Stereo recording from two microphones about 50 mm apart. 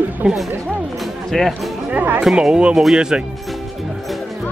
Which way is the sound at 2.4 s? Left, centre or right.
Centre.